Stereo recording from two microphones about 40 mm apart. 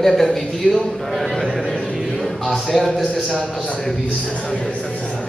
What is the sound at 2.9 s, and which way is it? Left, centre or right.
Speech, left.